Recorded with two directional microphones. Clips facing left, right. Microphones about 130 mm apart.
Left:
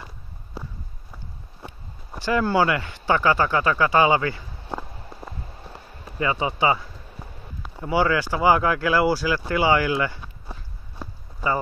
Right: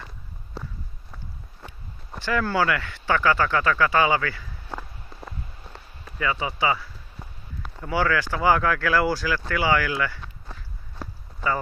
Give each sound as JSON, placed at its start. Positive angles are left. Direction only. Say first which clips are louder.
{"t": 0.6, "sound": "walk", "louder": "even", "side_deg": 5}
{"t": 2.1, "sound": "speech", "louder": "left 3 dB", "side_deg": 15}
{"t": 6.0, "sound": "a sound", "louder": "left 2 dB", "side_deg": 30}
{"t": 6.3, "sound": "speech", "louder": "left 3 dB", "side_deg": 25}